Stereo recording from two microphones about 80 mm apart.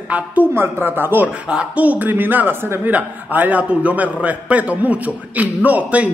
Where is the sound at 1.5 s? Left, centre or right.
Centre.